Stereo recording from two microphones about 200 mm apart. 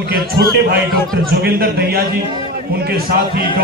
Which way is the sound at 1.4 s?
50° right (ahead or behind).